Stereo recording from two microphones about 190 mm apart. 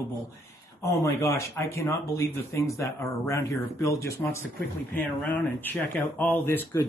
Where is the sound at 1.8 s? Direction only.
15° left (ahead or behind).